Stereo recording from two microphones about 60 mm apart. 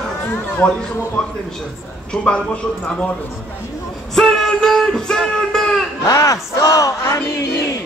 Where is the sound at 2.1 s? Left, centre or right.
Centre.